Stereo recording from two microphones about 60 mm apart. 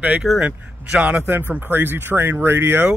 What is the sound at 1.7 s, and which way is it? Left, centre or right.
Speech, right.